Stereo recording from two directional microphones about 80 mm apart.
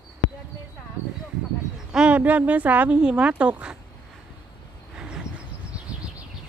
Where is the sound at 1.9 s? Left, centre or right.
Centre.